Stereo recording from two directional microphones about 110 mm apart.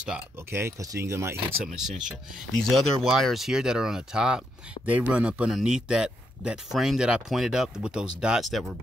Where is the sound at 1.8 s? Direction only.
5° right (ahead or behind).